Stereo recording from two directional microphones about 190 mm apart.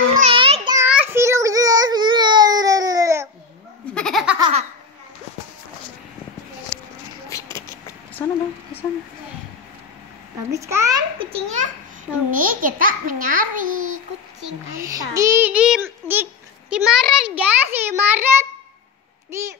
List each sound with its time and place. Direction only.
0.2 s child singing: 30° right (ahead or behind)
0.7 s child singing: 10° right (ahead or behind)
3.9 s baby laughter: centre (ahead or behind)
4.4 s laughter: 30° right (ahead or behind)
7.3 s a sound: 15° left (ahead or behind)
10.5 s babbling: 15° right (ahead or behind); by 11.7 s 40° right (ahead or behind)
12.3 s a sound: 45° right (ahead or behind)
13.7 s child singing: 90° right
14.7 s child singing: 15° right (ahead or behind)